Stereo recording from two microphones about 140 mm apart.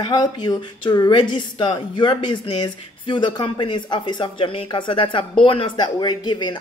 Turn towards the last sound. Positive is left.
turn(degrees=30)  # may be behind; listen again after turning